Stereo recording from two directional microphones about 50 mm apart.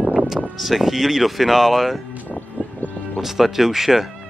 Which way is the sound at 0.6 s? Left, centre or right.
Centre.